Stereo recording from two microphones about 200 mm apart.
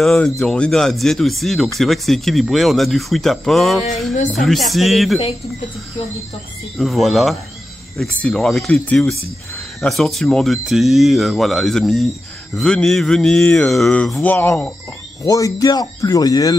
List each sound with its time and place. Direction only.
0.0 s speech: centre (ahead or behind)
6.8 s speech: centre (ahead or behind); by 16.5 s 20° left (ahead or behind)